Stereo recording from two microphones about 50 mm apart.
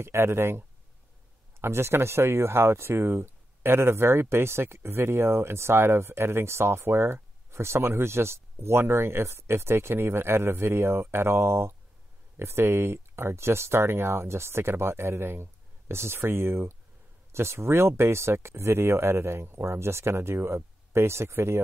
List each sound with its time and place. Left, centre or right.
0.0 s speech: right